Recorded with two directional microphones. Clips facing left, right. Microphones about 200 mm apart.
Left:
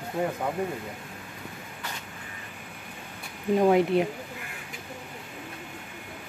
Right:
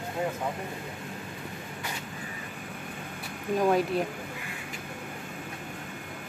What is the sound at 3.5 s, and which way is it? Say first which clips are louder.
Speech: left 4 dB; 25° left (ahead or behind).